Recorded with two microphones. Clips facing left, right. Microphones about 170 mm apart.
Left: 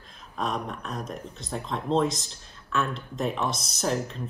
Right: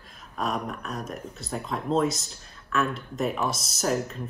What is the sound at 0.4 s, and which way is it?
Speech, centre (ahead or behind).